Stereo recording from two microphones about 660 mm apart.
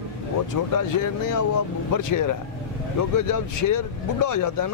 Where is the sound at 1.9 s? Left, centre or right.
Left.